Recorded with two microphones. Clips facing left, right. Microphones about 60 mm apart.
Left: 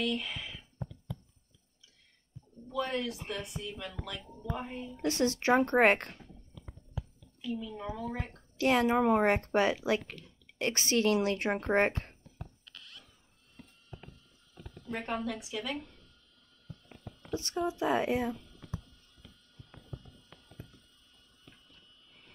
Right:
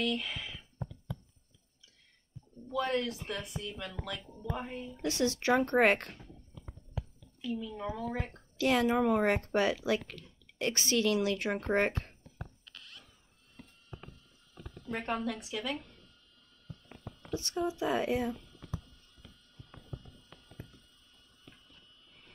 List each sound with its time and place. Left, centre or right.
0.0 s speech: centre
2.7 s a woman's voice: centre
5.0 s speech: left
7.4 s a woman's voice: centre
8.5 s speech: left
12.6 s a sound: right
14.9 s a woman's voice: centre
17.3 s speech: left